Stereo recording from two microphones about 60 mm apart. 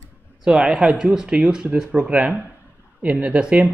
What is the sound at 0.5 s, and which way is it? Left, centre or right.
A man's voice, centre.